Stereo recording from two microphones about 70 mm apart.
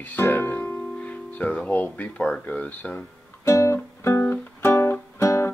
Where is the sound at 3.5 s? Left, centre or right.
Left.